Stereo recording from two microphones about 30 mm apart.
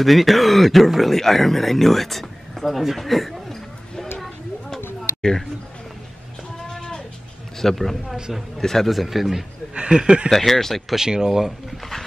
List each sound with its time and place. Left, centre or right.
0.0 s speech: centre
4.6 s a sound: centre
7.5 s speech: centre
8.8 s speech: centre
9.8 s speech: right
10.3 s speech: centre
11.0 s speech: right